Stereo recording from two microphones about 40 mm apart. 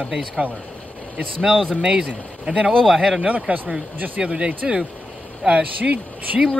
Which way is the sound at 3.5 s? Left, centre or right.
Right.